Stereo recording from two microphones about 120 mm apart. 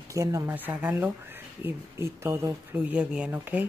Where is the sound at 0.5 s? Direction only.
15° right (ahead or behind).